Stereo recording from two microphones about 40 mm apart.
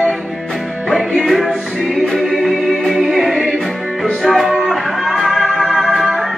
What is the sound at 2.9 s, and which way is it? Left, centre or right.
Music, centre.